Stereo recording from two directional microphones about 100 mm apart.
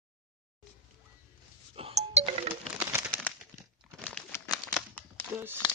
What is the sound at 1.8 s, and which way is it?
Music, 85° right.